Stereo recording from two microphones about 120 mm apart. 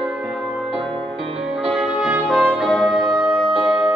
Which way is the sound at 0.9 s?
50° right (ahead or behind).